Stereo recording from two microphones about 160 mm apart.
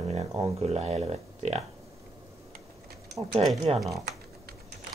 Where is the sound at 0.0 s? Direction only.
45° right (ahead or behind).